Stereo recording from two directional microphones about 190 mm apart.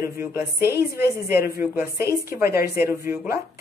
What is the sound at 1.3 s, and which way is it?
Speech, 50° left (ahead or behind).